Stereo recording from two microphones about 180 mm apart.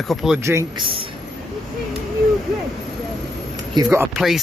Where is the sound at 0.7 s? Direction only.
30° right (ahead or behind).